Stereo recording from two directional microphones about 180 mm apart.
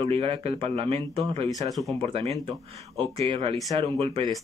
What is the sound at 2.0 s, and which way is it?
Speech, 30° right (ahead or behind).